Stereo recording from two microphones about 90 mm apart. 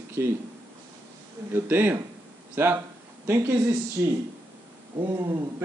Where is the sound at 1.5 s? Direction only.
25° right (ahead or behind).